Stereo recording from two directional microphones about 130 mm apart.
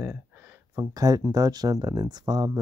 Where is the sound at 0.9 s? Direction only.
30° right (ahead or behind).